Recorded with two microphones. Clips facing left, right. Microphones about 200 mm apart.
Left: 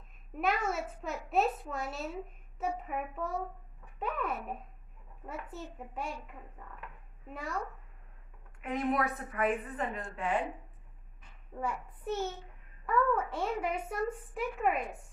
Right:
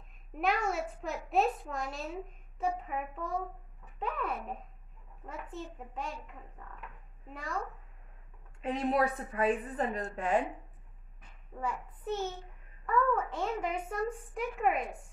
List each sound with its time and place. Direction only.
0.4 s a child's voice: centre (ahead or behind)
8.5 s a woman's voice: 30° right (ahead or behind)
11.6 s a woman's voice: 10° left (ahead or behind)